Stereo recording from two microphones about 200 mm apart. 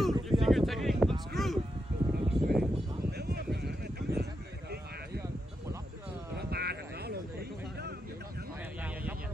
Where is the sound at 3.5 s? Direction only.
55° right (ahead or behind).